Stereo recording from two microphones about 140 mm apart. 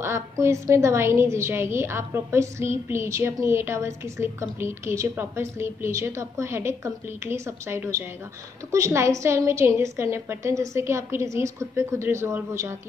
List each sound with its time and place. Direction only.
0.0 s a woman's voice: 20° right (ahead or behind)